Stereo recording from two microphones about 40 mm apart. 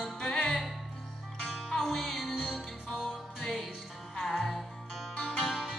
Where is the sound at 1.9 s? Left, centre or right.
Centre.